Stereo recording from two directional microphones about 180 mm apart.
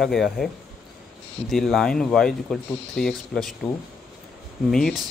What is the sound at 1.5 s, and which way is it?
Speech, centre (ahead or behind).